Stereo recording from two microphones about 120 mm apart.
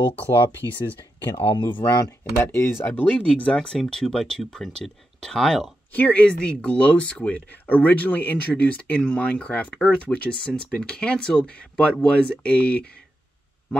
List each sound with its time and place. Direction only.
0.6 s speech: 30° right (ahead or behind)
1.4 s speech: 45° left (ahead or behind)
1.9 s speech: 25° left (ahead or behind)